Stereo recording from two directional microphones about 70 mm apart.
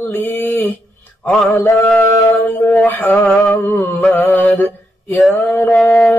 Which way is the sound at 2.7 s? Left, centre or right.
Left.